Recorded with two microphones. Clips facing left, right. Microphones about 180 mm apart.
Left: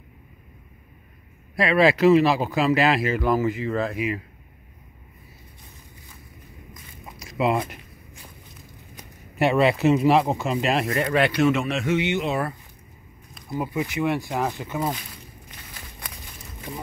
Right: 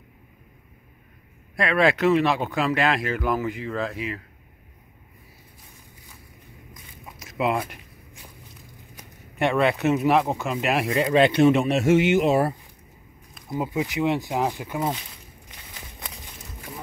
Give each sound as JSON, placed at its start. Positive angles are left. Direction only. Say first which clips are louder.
{"t": 1.6, "sound": "speech", "louder": "left 3 dB", "side_deg": 5}
{"t": 7.2, "sound": "a sound", "louder": "left 2 dB", "side_deg": 0}
{"t": 9.4, "sound": "speech", "louder": "left 2 dB", "side_deg": 5}
{"t": 10.9, "sound": "a man's voice", "louder": "right 3 dB", "side_deg": -20}
{"t": 13.5, "sound": "speech", "louder": "right 1 dB", "side_deg": -15}
{"t": 15.0, "sound": "walk", "louder": "left 2 dB", "side_deg": -20}